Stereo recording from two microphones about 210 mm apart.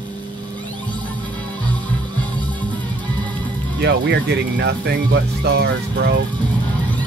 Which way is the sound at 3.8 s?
50° right (ahead or behind).